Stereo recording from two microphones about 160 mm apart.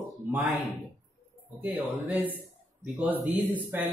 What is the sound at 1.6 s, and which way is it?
Speech, 10° right (ahead or behind).